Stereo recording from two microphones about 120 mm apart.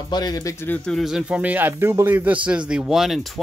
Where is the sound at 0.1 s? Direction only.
35° left (ahead or behind).